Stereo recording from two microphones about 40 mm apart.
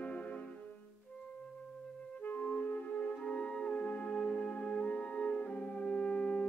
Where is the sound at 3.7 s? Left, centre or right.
Left.